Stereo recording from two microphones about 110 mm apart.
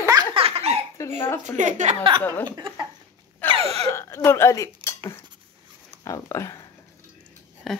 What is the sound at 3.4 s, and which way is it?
Throat clearing, 15° left (ahead or behind).